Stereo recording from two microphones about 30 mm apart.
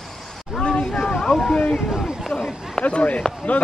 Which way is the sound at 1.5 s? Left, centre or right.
Left.